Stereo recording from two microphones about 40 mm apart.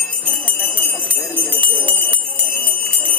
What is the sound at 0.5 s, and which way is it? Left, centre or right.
Jingle bell, left.